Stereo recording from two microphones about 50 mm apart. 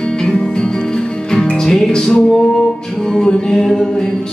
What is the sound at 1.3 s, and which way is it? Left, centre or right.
Music, centre.